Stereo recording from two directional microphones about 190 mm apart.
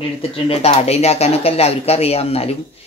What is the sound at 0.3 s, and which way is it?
Speech, 30° left (ahead or behind).